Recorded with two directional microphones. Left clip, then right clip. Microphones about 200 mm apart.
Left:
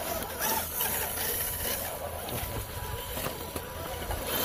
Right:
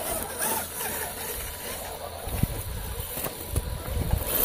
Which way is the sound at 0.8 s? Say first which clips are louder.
Even; 10° right (ahead or behind).